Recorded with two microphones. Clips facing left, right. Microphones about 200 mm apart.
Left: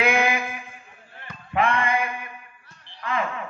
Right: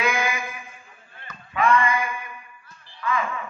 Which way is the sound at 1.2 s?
55° left (ahead or behind).